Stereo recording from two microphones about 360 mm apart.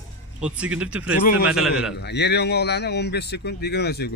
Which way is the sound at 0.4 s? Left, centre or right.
Centre.